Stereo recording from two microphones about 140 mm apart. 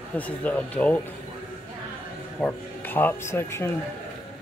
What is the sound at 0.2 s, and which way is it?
Speech, 10° left (ahead or behind).